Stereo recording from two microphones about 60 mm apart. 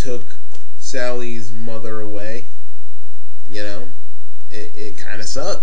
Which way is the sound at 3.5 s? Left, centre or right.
Centre.